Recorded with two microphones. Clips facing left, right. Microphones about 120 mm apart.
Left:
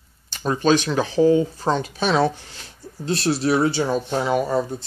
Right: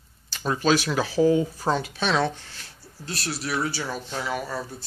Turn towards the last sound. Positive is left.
turn(degrees=25)  # may be behind; listen again after turning